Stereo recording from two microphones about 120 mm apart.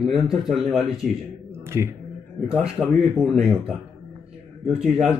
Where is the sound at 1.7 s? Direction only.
25° right (ahead or behind).